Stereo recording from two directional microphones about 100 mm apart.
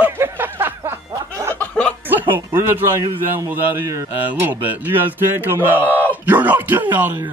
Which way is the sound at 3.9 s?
25° right (ahead or behind).